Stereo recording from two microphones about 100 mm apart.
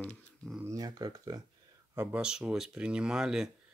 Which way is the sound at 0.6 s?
40° right (ahead or behind).